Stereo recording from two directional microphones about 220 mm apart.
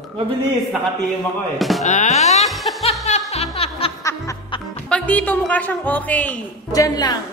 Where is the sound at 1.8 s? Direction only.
30° left (ahead or behind).